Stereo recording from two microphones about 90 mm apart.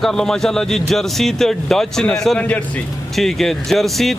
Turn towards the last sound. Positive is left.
turn(degrees=0)  # may be behind; listen again after turning